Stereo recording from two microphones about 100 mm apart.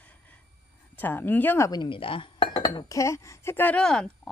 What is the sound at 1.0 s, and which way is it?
Speech, 20° left (ahead or behind).